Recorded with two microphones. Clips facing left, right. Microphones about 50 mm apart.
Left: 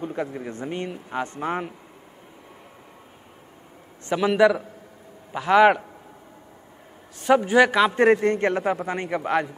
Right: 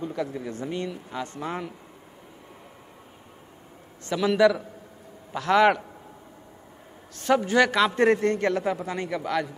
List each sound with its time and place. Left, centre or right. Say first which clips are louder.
0.0 s speech: left 1 dB; left
4.1 s a man's voice: left 2 dB; left
7.2 s a man's voice: left 4 dB; centre; by 9.5 s left